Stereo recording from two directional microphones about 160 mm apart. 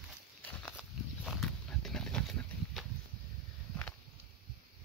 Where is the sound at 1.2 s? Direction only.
Centre (ahead or behind).